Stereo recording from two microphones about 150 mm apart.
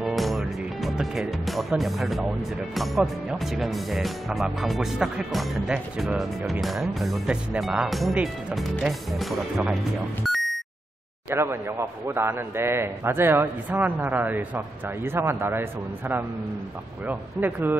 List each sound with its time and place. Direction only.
0.0 s music: centre (ahead or behind)
1.4 s speech: centre (ahead or behind)
10.2 s a sound: centre (ahead or behind)
11.2 s a man's voice: 15° right (ahead or behind)
17.1 s a man's voice: 10° right (ahead or behind)